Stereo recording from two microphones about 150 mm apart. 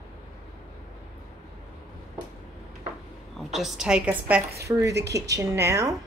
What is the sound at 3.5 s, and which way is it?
Speech, centre (ahead or behind).